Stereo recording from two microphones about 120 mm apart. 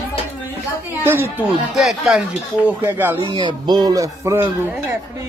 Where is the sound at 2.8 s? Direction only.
20° right (ahead or behind).